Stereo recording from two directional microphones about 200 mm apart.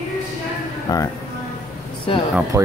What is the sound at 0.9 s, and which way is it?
Speech, 15° left (ahead or behind).